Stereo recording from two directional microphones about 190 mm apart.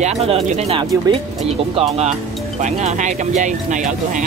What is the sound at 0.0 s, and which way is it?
Speech, 35° right (ahead or behind).